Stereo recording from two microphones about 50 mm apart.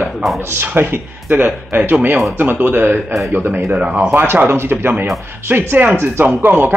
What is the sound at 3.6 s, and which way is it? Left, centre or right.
Speech, right.